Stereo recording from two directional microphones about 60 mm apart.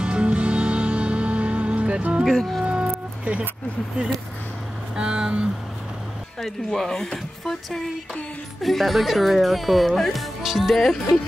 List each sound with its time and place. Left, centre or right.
0.0 s music: centre
2.2 s speech: centre
2.6 s music: centre
4.9 s speech: centre
6.4 s speech: centre